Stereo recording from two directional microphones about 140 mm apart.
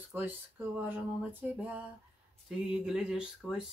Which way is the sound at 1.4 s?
10° right (ahead or behind).